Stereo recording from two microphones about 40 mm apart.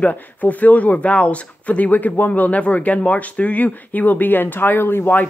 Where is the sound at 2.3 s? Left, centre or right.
Left.